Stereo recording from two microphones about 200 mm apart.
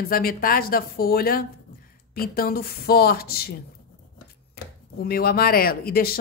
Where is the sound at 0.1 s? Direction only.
45° left (ahead or behind).